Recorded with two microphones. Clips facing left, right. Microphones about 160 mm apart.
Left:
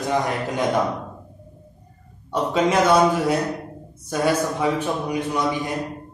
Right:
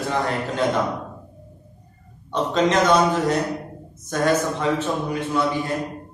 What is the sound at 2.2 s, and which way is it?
A man's voice, 10° left (ahead or behind).